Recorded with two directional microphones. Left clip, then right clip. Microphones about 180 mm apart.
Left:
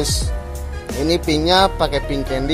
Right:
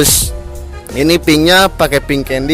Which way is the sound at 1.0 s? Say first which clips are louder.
Right 8 dB; 60° right (ahead or behind).